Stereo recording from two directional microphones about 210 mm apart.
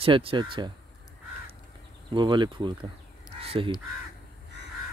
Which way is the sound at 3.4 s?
25° right (ahead or behind).